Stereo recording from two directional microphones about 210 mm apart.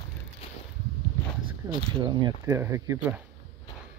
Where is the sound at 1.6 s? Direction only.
15° right (ahead or behind).